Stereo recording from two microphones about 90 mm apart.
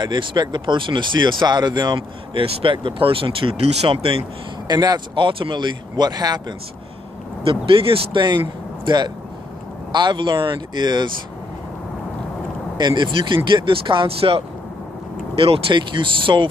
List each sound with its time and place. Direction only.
0.0 s speech: 60° right (ahead or behind)
2.4 s speech: 70° right (ahead or behind); by 4.2 s 90° right
4.6 s speech: 45° right (ahead or behind)
5.1 s speech: 70° right (ahead or behind); by 6.4 s 50° right (ahead or behind)
7.4 s speech: 90° right
8.2 s speech: 60° right (ahead or behind)
12.7 s speech: 55° right (ahead or behind)